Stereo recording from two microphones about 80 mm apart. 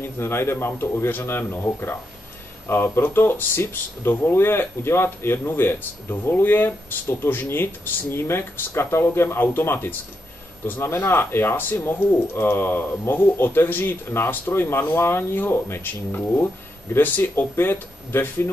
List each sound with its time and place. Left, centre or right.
0.0 s speech: left